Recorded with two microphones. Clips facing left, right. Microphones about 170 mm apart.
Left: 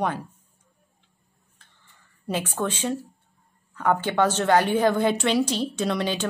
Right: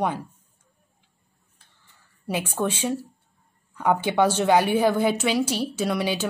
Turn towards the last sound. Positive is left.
turn(degrees=-10)  # may be behind; listen again after turning